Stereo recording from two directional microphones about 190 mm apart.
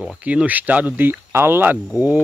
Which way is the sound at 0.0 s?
5° right (ahead or behind).